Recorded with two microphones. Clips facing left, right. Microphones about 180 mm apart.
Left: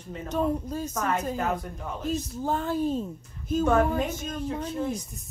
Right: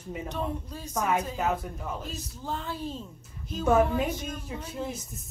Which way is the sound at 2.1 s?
50° left (ahead or behind).